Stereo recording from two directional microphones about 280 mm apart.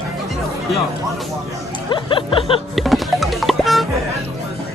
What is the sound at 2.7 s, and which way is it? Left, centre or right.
Music, centre.